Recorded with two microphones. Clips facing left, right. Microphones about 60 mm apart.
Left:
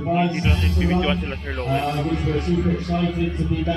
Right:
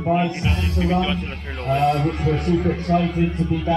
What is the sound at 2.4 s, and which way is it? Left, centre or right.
Speech, right.